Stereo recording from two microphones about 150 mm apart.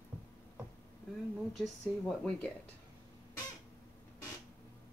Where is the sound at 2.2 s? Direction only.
10° left (ahead or behind).